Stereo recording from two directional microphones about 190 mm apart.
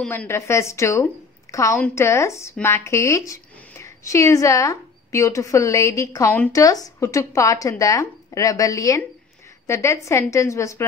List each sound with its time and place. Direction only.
0.0 s a woman's voice: 10° left (ahead or behind)